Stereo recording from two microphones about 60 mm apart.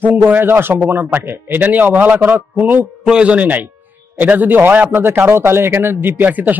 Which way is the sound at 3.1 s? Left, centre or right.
Centre.